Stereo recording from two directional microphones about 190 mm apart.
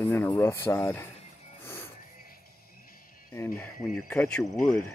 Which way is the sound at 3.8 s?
5° left (ahead or behind).